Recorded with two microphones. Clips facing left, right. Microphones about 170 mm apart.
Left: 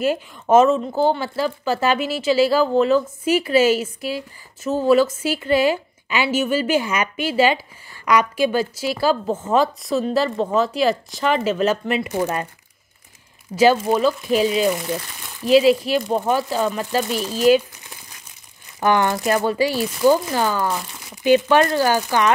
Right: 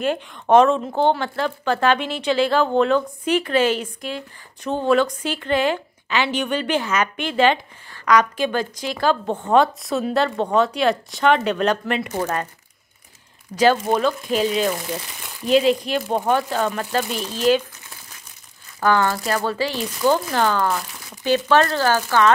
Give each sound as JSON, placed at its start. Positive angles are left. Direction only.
{"t": 0.0, "sound": "a woman's voice", "side_deg": 5}
{"t": 13.5, "sound": "speech", "side_deg": 30}
{"t": 13.8, "sound": "a woman's voice", "side_deg": 5}
{"t": 18.8, "sound": "speech", "side_deg": 20}